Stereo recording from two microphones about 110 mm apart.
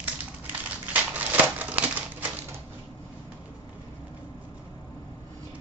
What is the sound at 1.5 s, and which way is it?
Crumpling, 15° right (ahead or behind).